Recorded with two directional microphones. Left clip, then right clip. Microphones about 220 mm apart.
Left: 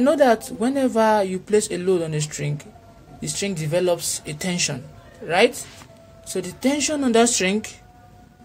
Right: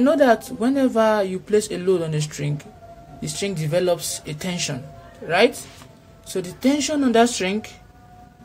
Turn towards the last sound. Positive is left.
turn(degrees=20)  # may be behind; listen again after turning